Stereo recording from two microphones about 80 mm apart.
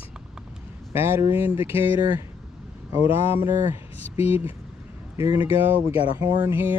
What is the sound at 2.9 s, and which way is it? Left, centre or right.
Speech, right.